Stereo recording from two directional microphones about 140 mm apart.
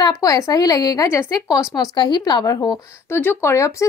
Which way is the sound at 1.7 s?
30° left (ahead or behind).